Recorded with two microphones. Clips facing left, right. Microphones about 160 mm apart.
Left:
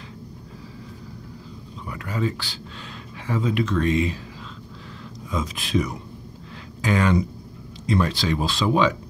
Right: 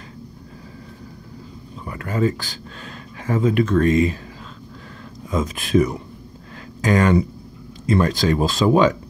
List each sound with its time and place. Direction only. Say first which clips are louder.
1.9 s speech: right 5 dB; 50° right (ahead or behind)
5.3 s speech: right 6 dB; 50° right (ahead or behind)